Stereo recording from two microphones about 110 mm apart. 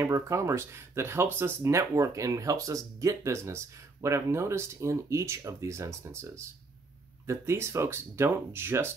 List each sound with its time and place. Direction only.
0.0 s speech: 25° right (ahead or behind)